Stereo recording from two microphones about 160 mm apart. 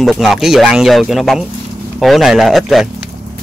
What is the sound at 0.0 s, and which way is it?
Speech, centre (ahead or behind).